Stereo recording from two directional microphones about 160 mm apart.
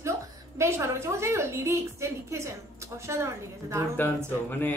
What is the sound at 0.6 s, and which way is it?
A woman's voice, 15° right (ahead or behind).